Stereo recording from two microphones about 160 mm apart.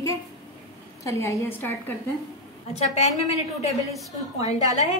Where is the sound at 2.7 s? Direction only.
45° left (ahead or behind).